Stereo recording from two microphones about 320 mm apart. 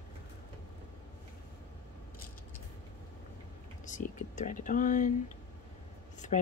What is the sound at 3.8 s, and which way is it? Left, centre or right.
Speech, left.